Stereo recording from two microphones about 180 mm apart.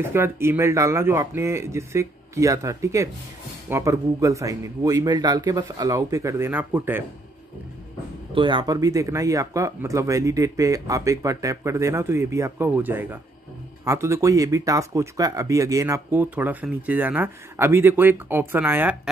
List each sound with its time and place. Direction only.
0.0 s speech: 15° right (ahead or behind)
8.4 s speech: 25° right (ahead or behind); by 18.9 s 10° right (ahead or behind)